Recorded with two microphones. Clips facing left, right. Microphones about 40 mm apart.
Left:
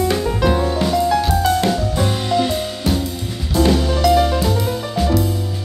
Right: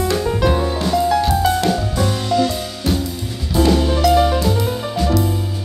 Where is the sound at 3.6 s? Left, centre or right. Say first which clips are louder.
Right 1 dB; centre.